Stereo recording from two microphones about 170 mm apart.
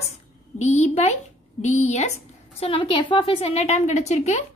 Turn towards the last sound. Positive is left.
turn(degrees=40)  # may be behind; listen again after turning